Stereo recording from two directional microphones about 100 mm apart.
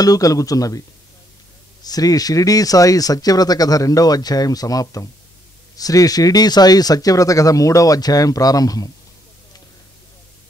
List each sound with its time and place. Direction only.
0.0 s speech: 35° left (ahead or behind)